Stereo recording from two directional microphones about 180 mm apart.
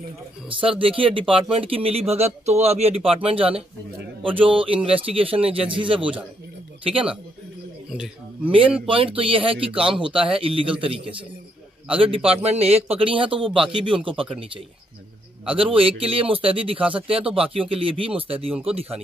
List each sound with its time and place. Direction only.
0.5 s speech: 30° right (ahead or behind)
8.5 s speech: 30° right (ahead or behind)
12.3 s speech: 35° right (ahead or behind)
15.4 s speech: 30° right (ahead or behind)